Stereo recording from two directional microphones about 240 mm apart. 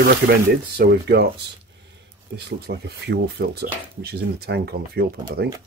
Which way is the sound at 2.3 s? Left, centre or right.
Right.